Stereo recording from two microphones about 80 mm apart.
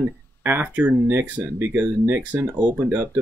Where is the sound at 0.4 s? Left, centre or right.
Right.